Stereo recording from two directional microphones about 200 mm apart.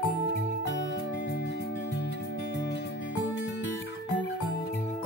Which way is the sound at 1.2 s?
60° left (ahead or behind).